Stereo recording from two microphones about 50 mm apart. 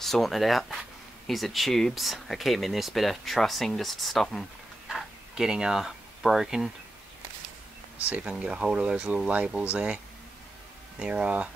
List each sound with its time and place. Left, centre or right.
0.0 s speech: centre
4.8 s a sound: centre
8.1 s speech: right
11.0 s speech: right